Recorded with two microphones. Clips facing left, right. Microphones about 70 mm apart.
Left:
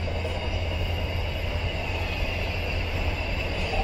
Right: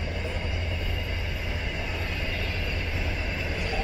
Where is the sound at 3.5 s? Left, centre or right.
Centre.